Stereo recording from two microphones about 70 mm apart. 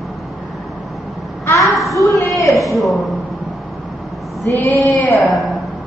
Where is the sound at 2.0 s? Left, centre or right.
Left.